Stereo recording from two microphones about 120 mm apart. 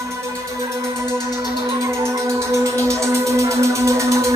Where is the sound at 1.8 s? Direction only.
25° right (ahead or behind).